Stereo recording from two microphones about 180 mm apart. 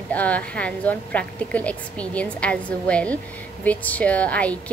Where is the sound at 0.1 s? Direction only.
10° left (ahead or behind).